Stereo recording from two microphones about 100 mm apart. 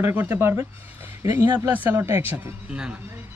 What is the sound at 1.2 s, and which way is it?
Speech, 35° right (ahead or behind).